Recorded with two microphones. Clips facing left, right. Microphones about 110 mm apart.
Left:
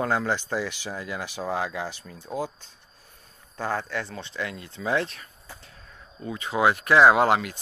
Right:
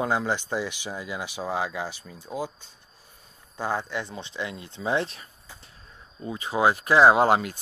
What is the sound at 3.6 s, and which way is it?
Speech, 15° right (ahead or behind).